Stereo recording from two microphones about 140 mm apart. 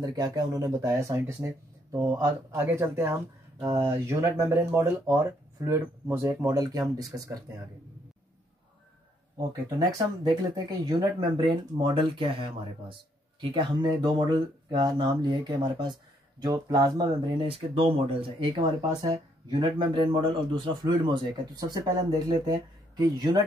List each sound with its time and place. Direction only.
0.0 s speech: 30° right (ahead or behind)
9.8 s speech: 30° right (ahead or behind)
17.4 s speech: 40° right (ahead or behind)